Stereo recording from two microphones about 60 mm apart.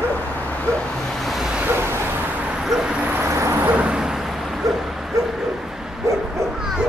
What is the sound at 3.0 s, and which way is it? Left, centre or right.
Vehicle, right.